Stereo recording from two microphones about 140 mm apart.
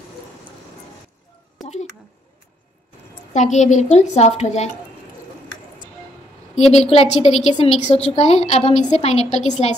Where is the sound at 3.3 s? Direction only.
60° left (ahead or behind).